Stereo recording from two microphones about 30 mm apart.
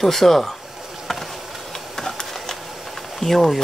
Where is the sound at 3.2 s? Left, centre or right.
Centre.